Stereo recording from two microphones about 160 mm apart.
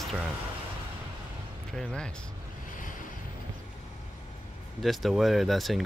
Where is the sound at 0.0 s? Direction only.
Centre (ahead or behind).